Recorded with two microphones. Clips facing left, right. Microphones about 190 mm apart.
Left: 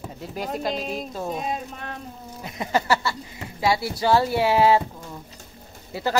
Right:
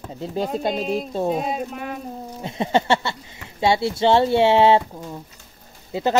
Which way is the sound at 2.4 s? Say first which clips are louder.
Right 3 dB; 25° right (ahead or behind).